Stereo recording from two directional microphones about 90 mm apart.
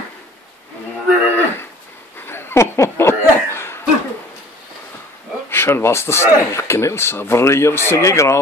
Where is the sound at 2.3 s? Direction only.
25° left (ahead or behind).